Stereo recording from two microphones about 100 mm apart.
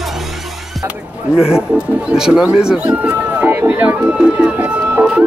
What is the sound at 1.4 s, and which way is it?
Speech, 5° right (ahead or behind).